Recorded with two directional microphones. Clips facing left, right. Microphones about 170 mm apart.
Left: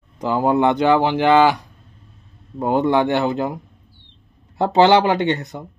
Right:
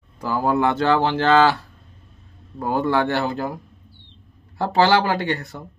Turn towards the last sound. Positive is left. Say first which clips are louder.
# left 4 dB
turn(degrees=20)  # may be behind; listen again after turning